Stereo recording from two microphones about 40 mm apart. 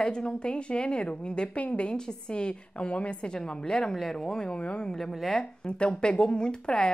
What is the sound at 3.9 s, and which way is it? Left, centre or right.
Speech, centre.